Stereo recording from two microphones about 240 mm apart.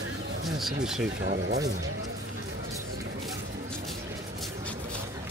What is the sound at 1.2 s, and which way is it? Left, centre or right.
Speech, right.